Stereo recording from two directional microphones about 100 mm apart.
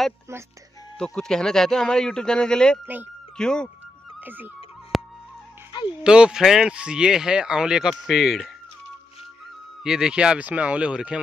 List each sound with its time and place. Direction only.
0.9 s speech: 5° left (ahead or behind)
4.2 s speech: 20° right (ahead or behind)
4.9 s music: centre (ahead or behind)
6.0 s speech: 10° right (ahead or behind)
9.8 s speech: 5° right (ahead or behind)